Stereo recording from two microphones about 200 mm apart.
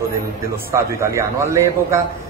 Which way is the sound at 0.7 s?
15° right (ahead or behind).